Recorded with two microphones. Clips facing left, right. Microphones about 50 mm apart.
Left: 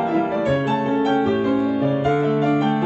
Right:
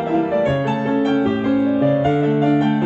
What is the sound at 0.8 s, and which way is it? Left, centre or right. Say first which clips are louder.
Music: right 1 dB; right.